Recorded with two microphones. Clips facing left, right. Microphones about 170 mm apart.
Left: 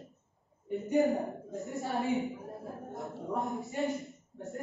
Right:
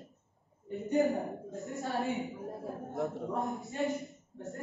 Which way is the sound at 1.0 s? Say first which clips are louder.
Left 1 dB; centre (ahead or behind).